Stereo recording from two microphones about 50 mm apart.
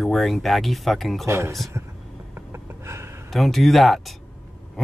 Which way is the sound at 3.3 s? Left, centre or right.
Centre.